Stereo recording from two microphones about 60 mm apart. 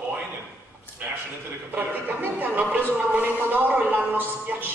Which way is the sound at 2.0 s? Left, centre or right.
Right.